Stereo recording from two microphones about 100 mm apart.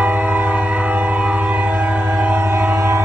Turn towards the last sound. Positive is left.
turn(degrees=-25)  # may be behind; listen again after turning